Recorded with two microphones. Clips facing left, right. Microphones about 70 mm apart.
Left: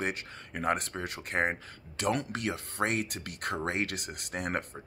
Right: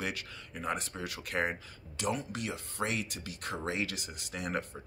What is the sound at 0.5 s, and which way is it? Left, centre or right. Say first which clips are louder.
Speech: left 5 dB; left.